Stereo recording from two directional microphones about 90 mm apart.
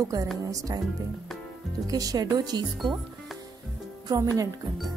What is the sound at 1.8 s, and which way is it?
Speech, 40° right (ahead or behind).